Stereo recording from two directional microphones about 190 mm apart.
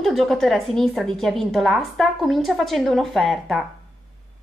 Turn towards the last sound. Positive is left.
turn(degrees=0)  # may be behind; listen again after turning